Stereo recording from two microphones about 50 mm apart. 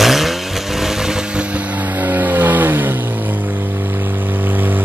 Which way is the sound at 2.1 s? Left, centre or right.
Right.